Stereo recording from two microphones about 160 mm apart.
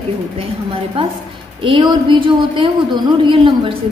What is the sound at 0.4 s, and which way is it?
A woman's voice, 35° right (ahead or behind).